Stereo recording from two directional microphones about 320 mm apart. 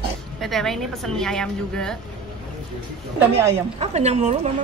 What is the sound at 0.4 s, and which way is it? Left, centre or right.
A woman's voice, centre.